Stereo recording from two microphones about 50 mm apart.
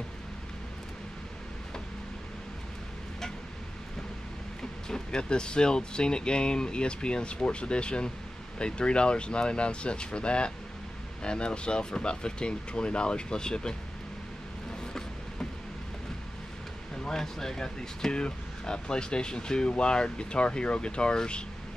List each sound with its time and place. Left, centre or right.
4.6 s speech: centre
16.9 s speech: centre